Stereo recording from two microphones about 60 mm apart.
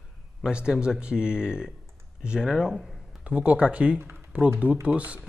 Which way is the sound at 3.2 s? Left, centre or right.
Right.